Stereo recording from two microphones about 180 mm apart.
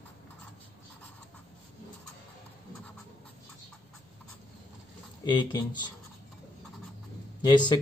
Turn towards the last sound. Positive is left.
turn(degrees=25)  # may be behind; listen again after turning